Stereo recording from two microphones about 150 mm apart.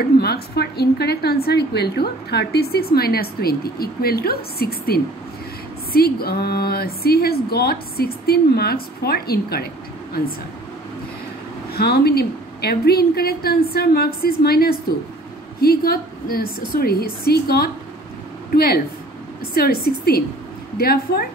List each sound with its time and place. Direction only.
0.2 s a woman's voice: 90° left
11.7 s a woman's voice: 90° left